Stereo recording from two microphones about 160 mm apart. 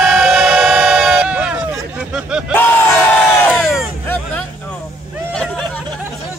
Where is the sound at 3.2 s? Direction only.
10° left (ahead or behind).